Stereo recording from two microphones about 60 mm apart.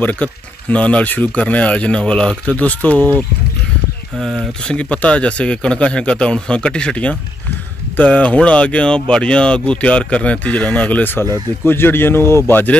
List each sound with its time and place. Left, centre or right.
0.0 s speech: left
4.6 s speech: centre
11.6 s a man's voice: left
12.4 s a man's voice: left